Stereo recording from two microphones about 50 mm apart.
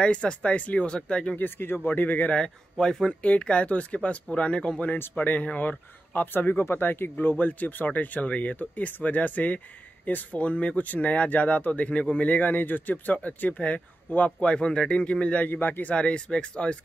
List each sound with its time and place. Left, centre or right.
0.0 s speech: left
1.4 s speech: left
2.2 s speech: centre
5.1 s speech: left
15.4 s speech: left
15.9 s speech: left